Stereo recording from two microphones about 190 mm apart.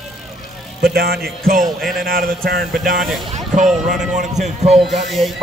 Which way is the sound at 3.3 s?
40° right (ahead or behind).